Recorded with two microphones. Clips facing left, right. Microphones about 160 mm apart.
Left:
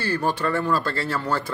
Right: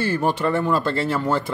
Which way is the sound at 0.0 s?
20° right (ahead or behind).